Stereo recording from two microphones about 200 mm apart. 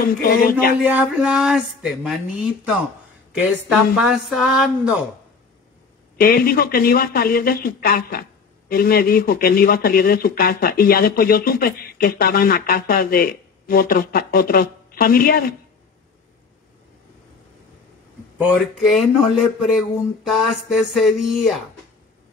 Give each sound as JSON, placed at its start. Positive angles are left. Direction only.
{"t": 0.0, "sound": "speech", "side_deg": 45}
{"t": 0.8, "sound": "speech", "side_deg": -5}
{"t": 6.1, "sound": "speech", "side_deg": 50}
{"t": 18.4, "sound": "speech", "side_deg": 0}